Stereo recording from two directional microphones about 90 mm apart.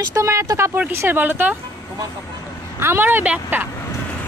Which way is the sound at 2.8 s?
25° right (ahead or behind).